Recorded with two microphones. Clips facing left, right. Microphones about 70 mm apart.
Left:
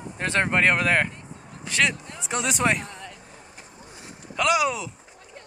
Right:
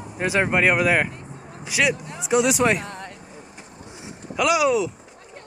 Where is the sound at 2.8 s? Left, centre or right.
Right.